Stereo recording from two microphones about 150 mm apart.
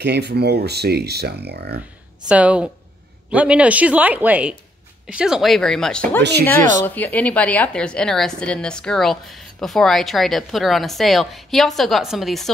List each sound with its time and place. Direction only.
0.0 s speech: 90° right
2.2 s a woman's voice: 10° right (ahead or behind)